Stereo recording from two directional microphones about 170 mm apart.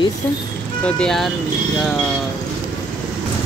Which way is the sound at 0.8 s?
5° left (ahead or behind).